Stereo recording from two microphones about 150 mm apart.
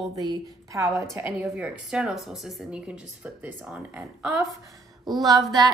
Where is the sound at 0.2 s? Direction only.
25° right (ahead or behind).